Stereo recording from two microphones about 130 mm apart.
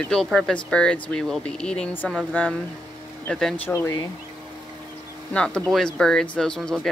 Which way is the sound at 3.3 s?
5° left (ahead or behind).